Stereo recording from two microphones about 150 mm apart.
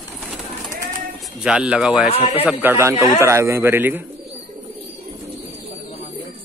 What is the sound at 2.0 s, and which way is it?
Speech, 40° left (ahead or behind).